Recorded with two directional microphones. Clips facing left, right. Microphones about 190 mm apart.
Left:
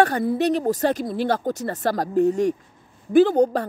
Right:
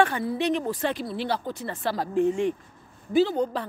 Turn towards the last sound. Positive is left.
turn(degrees=45)  # may be behind; listen again after turning